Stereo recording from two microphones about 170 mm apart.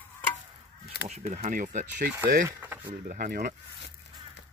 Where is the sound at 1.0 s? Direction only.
40° right (ahead or behind); by 3.5 s 60° right (ahead or behind).